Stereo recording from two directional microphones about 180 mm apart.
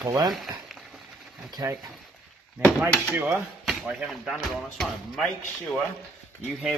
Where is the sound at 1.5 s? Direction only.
20° right (ahead or behind).